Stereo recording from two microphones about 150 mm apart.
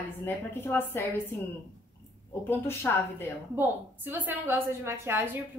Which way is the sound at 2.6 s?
15° left (ahead or behind).